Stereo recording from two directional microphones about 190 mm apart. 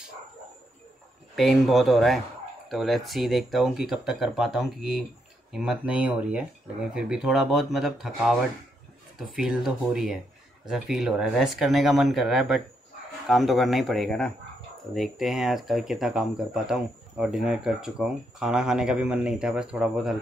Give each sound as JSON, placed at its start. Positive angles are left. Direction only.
{"t": 1.3, "sound": "speech", "side_deg": 0}
{"t": 9.4, "sound": "speech", "side_deg": 0}